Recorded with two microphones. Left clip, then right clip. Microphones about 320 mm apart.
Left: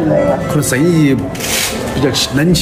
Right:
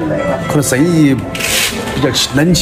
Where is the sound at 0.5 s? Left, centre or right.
Centre.